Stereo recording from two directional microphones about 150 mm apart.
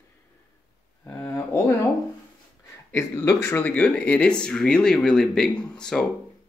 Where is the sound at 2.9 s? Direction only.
20° left (ahead or behind).